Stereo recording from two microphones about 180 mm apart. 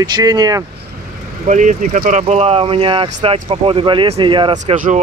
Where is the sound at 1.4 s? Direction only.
45° right (ahead or behind); by 4.5 s 25° right (ahead or behind).